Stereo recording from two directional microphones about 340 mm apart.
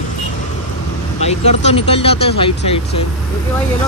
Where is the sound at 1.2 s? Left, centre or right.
Centre.